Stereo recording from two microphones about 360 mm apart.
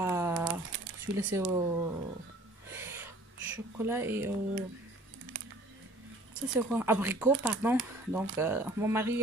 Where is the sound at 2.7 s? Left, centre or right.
Centre.